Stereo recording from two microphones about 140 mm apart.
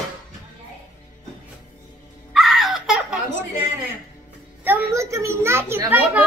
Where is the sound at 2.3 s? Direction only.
Centre (ahead or behind).